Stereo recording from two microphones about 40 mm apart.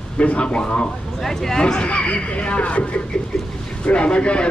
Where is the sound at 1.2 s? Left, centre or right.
Centre; by 4.5 s left.